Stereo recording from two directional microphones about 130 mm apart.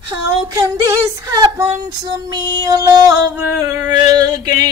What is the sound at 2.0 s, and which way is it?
Female singing, 30° right (ahead or behind).